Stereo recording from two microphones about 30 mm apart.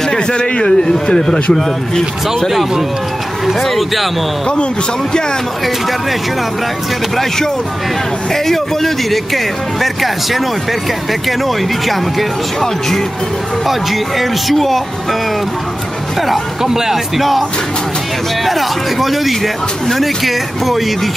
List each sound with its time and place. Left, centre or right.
0.3 s a man's voice: left
1.5 s speech: centre
3.6 s speech: centre
8.3 s speech: centre
13.7 s speech: centre
16.6 s speech: centre
17.2 s speech: centre